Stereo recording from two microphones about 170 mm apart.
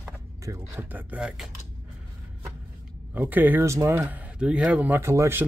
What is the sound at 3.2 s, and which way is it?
Speech, 10° right (ahead or behind).